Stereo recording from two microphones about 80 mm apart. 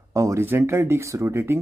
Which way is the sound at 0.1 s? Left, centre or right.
Right.